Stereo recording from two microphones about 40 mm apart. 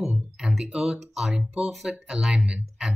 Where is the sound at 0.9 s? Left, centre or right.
Centre.